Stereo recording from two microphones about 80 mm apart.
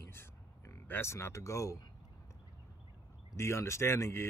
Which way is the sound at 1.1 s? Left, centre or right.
Left.